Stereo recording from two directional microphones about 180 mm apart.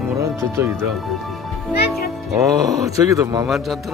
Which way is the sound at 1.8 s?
60° left (ahead or behind).